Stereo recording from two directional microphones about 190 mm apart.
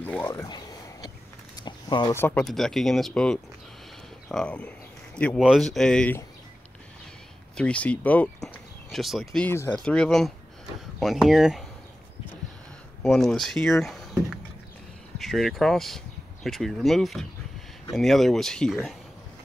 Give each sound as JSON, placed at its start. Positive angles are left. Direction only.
{"t": 0.0, "sound": "a sound", "side_deg": 10}
{"t": 2.1, "sound": "speech", "side_deg": 10}
{"t": 7.5, "sound": "speech", "side_deg": 5}
{"t": 13.0, "sound": "speech", "side_deg": 0}